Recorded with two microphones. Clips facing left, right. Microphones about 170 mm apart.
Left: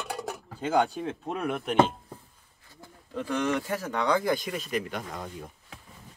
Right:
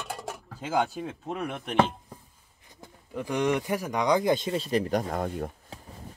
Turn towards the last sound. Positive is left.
turn(degrees=-55)  # may be behind; listen again after turning